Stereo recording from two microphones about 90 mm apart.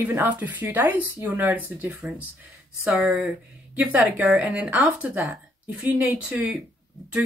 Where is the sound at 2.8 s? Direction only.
5° right (ahead or behind).